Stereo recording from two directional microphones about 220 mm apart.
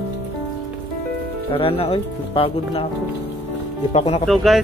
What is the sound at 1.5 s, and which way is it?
Speech, 25° left (ahead or behind).